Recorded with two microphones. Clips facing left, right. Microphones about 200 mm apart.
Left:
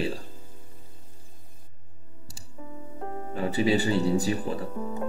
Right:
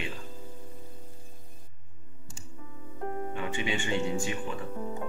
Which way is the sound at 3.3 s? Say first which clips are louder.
Left 12 dB; 35° left (ahead or behind).